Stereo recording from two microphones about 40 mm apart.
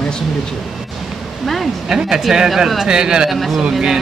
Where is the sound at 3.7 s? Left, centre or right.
Centre.